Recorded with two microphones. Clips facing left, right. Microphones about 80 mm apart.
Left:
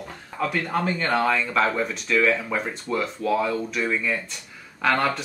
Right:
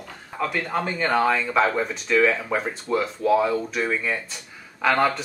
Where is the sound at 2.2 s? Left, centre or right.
Centre.